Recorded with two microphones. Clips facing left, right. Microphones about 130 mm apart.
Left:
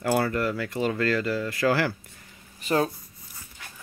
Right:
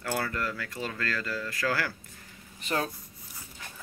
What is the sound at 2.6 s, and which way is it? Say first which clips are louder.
Speech: left 7 dB; 5° left (ahead or behind).